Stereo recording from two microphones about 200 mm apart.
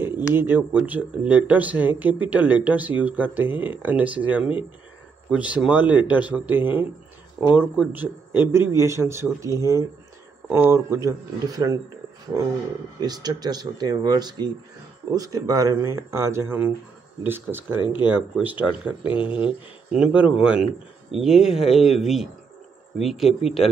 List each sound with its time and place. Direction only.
0.0 s speech: 10° right (ahead or behind)
13.0 s speech: 20° right (ahead or behind); by 23.5 s centre (ahead or behind)